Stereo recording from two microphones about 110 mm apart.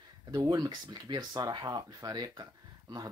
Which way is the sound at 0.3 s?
35° right (ahead or behind).